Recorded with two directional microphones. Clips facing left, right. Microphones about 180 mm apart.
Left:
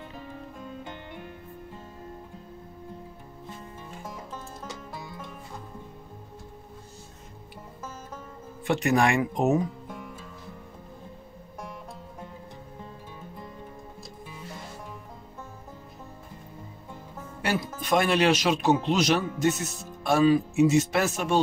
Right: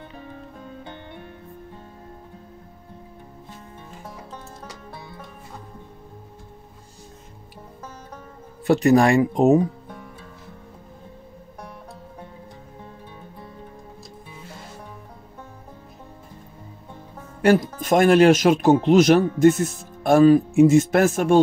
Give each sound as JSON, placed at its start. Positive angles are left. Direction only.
{"t": 8.6, "sound": "speech", "side_deg": -35}
{"t": 17.4, "sound": "speech", "side_deg": -45}